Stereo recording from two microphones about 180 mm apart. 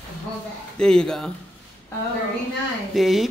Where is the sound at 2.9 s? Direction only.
Centre (ahead or behind).